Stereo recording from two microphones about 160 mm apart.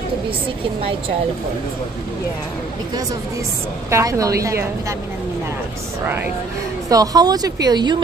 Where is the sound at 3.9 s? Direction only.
20° right (ahead or behind).